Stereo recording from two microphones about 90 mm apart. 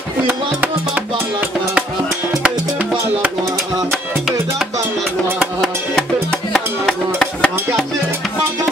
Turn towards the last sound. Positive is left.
turn(degrees=5)  # may be behind; listen again after turning